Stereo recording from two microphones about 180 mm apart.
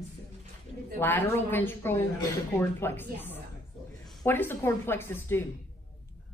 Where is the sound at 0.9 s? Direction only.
10° left (ahead or behind).